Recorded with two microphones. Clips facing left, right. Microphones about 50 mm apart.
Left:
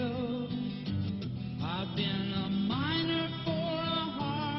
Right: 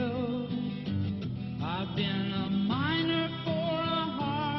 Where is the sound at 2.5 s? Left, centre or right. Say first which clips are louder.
Right 3 dB; centre.